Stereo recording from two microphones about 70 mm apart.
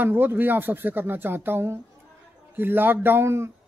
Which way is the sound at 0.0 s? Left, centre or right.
Right.